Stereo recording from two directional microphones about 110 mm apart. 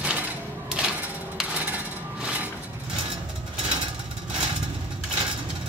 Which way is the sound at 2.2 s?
15° right (ahead or behind).